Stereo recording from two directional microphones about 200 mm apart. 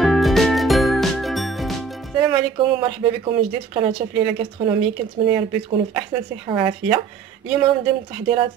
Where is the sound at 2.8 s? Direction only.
25° right (ahead or behind).